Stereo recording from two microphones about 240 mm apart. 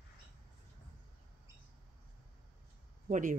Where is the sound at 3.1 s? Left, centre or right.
Right.